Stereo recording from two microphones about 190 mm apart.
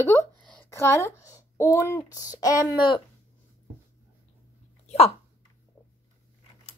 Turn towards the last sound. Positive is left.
turn(degrees=35)  # may be behind; listen again after turning